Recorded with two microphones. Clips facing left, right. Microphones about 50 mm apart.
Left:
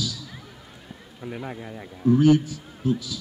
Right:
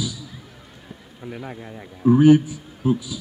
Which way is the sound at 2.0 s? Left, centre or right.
Centre.